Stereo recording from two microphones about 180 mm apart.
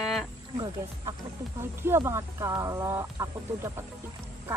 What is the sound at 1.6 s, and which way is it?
Speech, 15° right (ahead or behind).